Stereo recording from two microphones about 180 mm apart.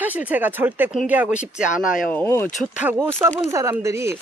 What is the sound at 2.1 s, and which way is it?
Speech, 10° left (ahead or behind).